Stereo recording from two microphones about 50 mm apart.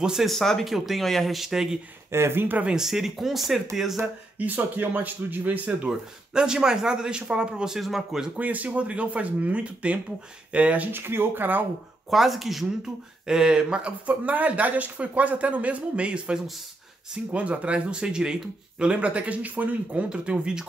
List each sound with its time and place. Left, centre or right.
0.0 s speech: centre
0.3 s speech: centre
2.0 s speech: right
2.7 s speech: centre
4.4 s speech: right
5.9 s speech: centre
7.7 s speech: centre
8.4 s speech: right
10.9 s speech: right
12.1 s speech: centre
13.3 s speech: centre
14.0 s speech: right